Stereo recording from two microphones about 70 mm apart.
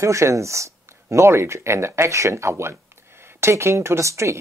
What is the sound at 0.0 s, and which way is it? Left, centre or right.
Speech, right.